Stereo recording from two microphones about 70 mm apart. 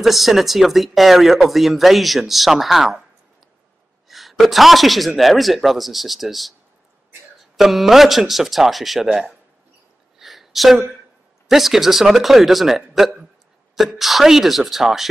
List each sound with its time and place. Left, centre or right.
0.0 s speech: centre
4.1 s speech: centre
7.5 s speech: centre
10.1 s a sound: centre
11.4 s speech: centre